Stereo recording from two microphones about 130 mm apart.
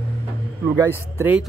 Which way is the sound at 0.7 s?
20° right (ahead or behind).